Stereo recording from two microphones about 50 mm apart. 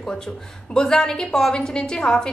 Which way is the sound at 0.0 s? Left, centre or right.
Centre.